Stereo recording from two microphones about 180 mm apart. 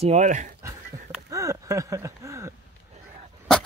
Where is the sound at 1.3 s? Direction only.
15° right (ahead or behind).